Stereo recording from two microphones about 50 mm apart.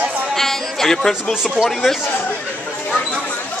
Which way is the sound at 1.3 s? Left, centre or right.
Centre.